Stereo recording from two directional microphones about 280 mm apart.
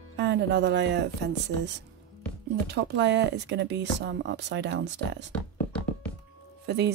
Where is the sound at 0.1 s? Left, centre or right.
Right.